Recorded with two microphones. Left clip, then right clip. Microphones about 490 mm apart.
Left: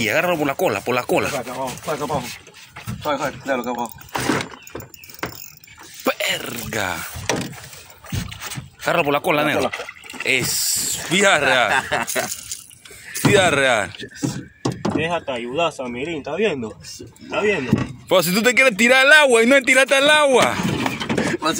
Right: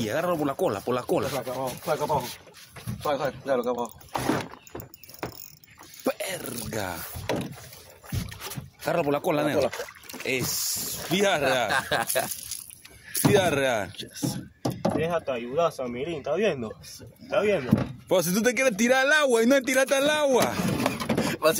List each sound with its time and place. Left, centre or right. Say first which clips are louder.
0.0 s speech: left 8 dB; right
3.0 s a man's voice: left 4 dB; right
4.1 s vehicle: left 6 dB; right
6.0 s a sound: left 8 dB; right
7.2 s vehicle: left 6 dB; right
8.8 s speech: left 7 dB; right
11.7 s a man's voice: left 6 dB; right
13.3 s speech: left 8 dB; right